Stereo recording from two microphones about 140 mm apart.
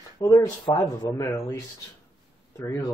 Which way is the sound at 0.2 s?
25° left (ahead or behind).